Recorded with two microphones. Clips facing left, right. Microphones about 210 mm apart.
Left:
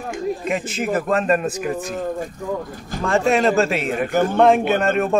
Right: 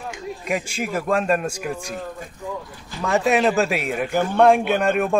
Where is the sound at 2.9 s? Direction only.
45° left (ahead or behind).